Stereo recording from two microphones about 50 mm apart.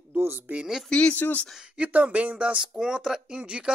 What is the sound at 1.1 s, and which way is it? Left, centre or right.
Speech, left.